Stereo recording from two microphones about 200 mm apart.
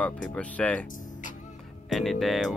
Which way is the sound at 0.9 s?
40° left (ahead or behind).